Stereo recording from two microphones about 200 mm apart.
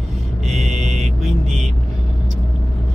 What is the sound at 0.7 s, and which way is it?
Mantra, 35° right (ahead or behind).